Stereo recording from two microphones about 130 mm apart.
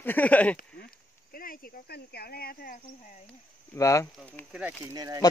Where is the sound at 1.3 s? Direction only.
90° left.